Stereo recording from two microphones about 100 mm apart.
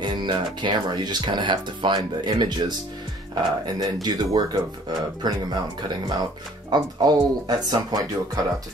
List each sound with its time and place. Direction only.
0.0 s speech: 50° right (ahead or behind)
6.7 s speech: 45° right (ahead or behind)